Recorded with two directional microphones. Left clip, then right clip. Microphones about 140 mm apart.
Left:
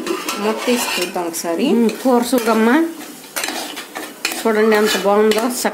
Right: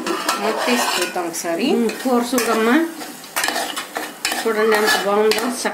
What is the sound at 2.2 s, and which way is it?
Cutlery, 65° left (ahead or behind).